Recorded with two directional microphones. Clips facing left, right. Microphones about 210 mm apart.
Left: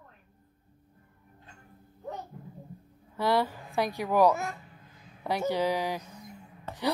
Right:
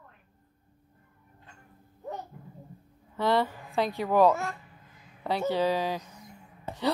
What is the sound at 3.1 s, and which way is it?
A woman's voice, 10° left (ahead or behind).